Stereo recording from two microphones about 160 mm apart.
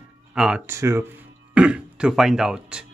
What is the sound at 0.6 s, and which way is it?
Speech, 15° right (ahead or behind).